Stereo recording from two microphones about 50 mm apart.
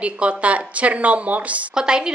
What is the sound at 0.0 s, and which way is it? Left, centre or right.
Speech, right.